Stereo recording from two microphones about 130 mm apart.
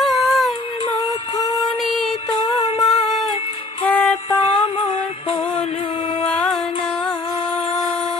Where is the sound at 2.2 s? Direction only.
40° left (ahead or behind).